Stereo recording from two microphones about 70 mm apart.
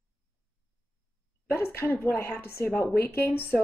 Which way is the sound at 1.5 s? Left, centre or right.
Left.